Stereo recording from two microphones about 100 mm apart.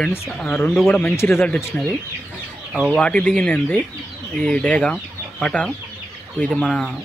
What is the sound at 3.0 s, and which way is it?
Speech, 10° left (ahead or behind).